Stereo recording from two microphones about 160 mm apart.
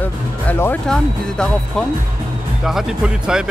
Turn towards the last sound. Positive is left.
turn(degrees=-5)  # may be behind; listen again after turning